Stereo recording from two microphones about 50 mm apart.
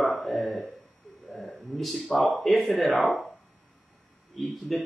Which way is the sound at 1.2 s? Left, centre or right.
Centre.